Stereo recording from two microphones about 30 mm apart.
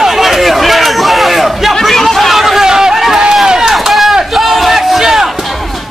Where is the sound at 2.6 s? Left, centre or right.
Centre.